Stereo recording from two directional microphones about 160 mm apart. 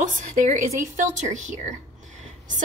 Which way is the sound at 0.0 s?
55° right (ahead or behind).